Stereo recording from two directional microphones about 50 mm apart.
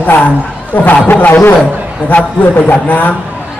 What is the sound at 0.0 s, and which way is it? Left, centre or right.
A man's voice, left.